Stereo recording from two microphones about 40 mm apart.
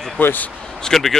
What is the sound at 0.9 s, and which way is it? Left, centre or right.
Speech, centre.